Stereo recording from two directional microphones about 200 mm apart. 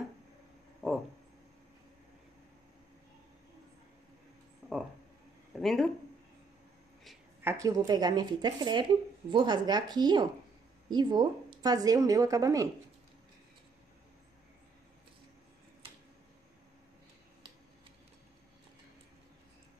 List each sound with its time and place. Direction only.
4.6 s a sound: 5° right (ahead or behind)
5.6 s speech: centre (ahead or behind)
7.4 s a woman's voice: 15° right (ahead or behind)